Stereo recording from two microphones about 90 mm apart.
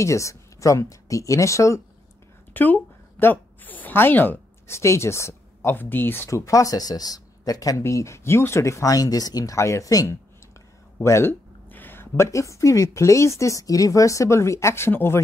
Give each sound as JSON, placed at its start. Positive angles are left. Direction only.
{"t": 0.0, "sound": "speech", "side_deg": 35}
{"t": 2.5, "sound": "speech", "side_deg": 20}
{"t": 7.8, "sound": "speech", "side_deg": 35}
{"t": 11.0, "sound": "speech", "side_deg": 30}